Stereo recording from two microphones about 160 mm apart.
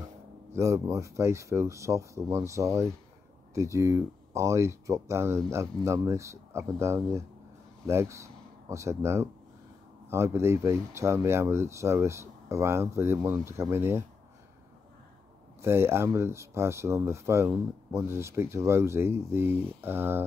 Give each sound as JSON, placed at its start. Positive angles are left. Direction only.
{"t": 0.5, "sound": "speech", "side_deg": -20}
{"t": 15.6, "sound": "speech", "side_deg": -15}